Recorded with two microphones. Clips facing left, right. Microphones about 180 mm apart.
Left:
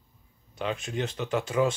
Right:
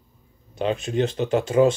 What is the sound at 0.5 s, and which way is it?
Speech, 25° right (ahead or behind).